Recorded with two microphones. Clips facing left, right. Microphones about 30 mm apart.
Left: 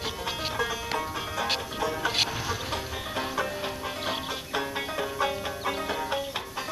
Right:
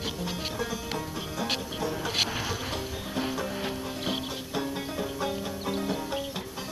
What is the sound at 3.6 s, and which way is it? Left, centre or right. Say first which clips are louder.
Music: left 1 dB; centre.